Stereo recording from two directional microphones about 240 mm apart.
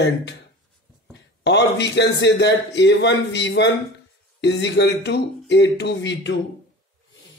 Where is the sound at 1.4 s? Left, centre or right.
Left.